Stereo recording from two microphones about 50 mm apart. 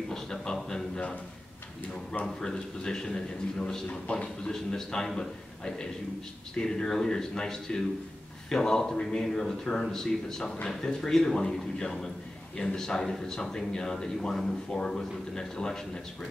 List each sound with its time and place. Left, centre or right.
0.1 s a sound: centre
2.2 s speech: centre
6.5 s speech: centre